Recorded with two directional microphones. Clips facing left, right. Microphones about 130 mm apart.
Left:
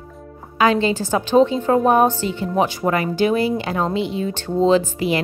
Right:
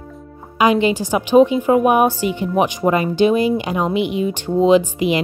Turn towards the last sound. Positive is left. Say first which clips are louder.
# right 3 dB
turn(degrees=-15)  # may be behind; listen again after turning